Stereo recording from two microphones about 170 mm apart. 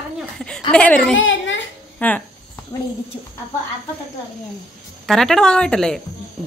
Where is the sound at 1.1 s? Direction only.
90° left.